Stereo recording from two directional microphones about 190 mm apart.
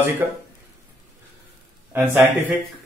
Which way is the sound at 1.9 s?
10° right (ahead or behind).